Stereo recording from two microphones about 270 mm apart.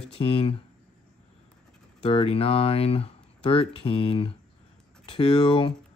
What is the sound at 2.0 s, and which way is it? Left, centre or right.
Speech, left.